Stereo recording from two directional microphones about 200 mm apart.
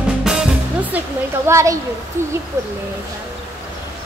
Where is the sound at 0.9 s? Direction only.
15° right (ahead or behind).